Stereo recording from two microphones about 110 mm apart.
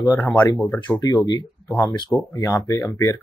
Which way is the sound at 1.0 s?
40° left (ahead or behind).